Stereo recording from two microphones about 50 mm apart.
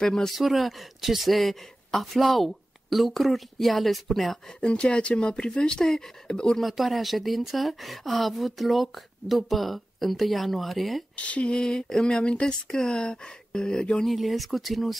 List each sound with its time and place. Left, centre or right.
0.0 s speech: centre
0.4 s speech: centre
4.6 s speech: left
6.6 s speech: centre
11.2 s speech: left
14.0 s speech: centre